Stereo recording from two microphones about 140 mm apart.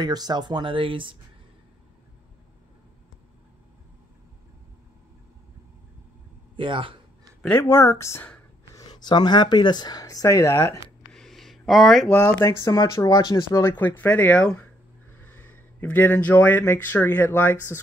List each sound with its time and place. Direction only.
0.0 s speech: 30° right (ahead or behind)
6.5 s speech: 35° right (ahead or behind)
7.4 s speech: 15° left (ahead or behind)
8.7 s speech: 30° left (ahead or behind)
11.1 s a sound: centre (ahead or behind)
12.1 s speech: 15° left (ahead or behind)
13.7 s speech: 15° left (ahead or behind)